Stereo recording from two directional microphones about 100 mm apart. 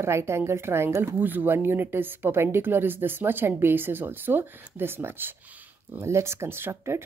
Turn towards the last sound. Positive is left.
turn(degrees=-25)  # may be behind; listen again after turning